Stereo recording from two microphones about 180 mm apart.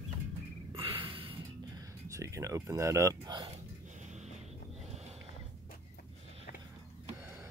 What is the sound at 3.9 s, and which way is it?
Music, 40° right (ahead or behind).